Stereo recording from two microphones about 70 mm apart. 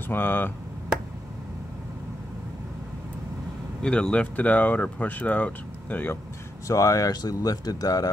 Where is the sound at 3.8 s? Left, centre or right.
Centre.